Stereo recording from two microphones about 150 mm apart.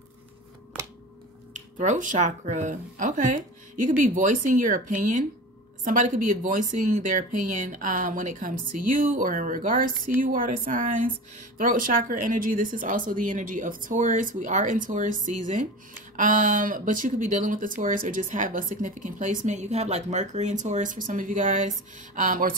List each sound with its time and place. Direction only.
1.5 s a woman's voice: 55° right (ahead or behind)